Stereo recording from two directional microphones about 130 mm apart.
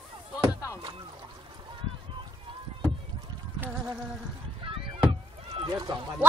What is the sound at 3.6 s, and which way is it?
Insect, 15° right (ahead or behind).